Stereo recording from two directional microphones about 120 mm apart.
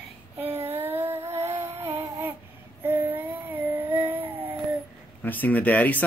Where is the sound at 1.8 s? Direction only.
20° right (ahead or behind).